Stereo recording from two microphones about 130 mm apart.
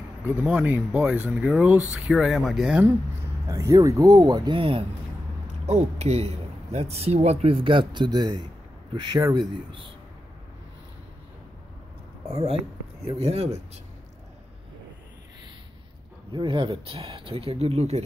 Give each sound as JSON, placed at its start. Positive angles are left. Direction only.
{"t": 0.2, "sound": "speech", "side_deg": -20}
{"t": 3.4, "sound": "speech", "side_deg": -25}
{"t": 5.5, "sound": "speech", "side_deg": -55}
{"t": 13.0, "sound": "speech", "side_deg": -50}
{"t": 16.3, "sound": "speech", "side_deg": -40}